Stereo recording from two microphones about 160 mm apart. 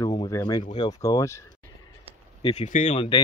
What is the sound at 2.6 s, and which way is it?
Speech, 50° left (ahead or behind).